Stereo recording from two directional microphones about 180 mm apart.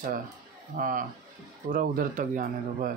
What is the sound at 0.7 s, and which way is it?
Speech, 50° right (ahead or behind).